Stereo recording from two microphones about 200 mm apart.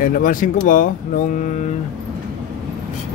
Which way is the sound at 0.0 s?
45° left (ahead or behind).